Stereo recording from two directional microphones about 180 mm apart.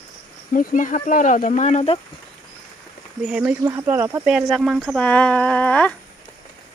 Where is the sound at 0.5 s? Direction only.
50° left (ahead or behind).